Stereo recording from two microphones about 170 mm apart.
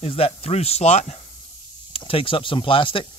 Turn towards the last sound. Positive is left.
turn(degrees=30)  # may be behind; listen again after turning